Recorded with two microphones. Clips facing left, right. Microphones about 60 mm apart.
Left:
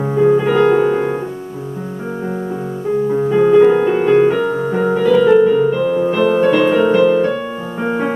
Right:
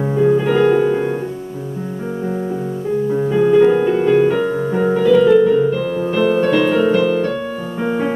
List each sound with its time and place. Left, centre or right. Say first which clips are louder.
0.1 s music: left 2 dB; centre
0.7 s piano: left 1 dB; left
3.2 s music: left 2 dB; centre
4.4 s music: left 1 dB; centre
7.8 s music: left 1 dB; left